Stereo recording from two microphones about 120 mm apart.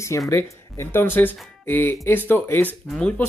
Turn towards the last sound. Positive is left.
turn(degrees=10)  # may be behind; listen again after turning